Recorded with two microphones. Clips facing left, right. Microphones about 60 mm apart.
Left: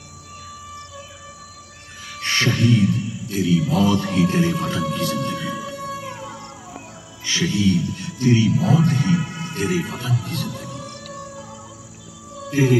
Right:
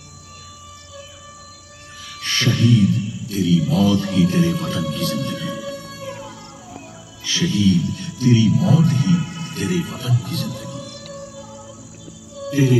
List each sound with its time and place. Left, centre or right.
2.1 s a sound: left
7.2 s speech: left
8.6 s speech: left
10.4 s music: left
12.4 s music: left